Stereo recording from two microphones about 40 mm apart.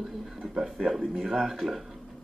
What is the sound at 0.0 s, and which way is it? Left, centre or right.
Speech, centre.